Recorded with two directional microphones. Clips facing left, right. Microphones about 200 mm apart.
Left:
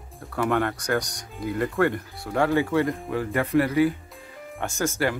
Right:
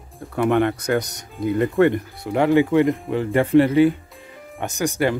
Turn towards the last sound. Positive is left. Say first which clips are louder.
# right 4 dB
turn(degrees=-20)  # may be behind; listen again after turning